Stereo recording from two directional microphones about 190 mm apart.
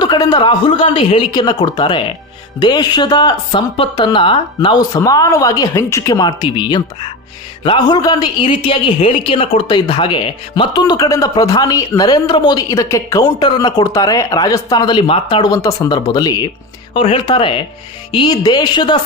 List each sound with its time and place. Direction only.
0.0 s a woman's voice: 20° left (ahead or behind)